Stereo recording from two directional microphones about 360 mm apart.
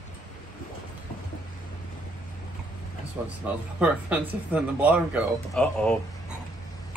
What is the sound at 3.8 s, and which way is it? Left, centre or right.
Speech, centre.